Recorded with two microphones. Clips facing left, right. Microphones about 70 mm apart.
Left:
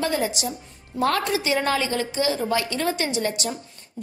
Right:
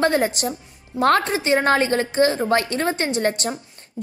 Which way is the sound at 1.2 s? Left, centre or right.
Right.